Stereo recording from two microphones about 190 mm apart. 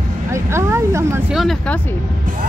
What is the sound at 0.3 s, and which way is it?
Speech, 15° right (ahead or behind).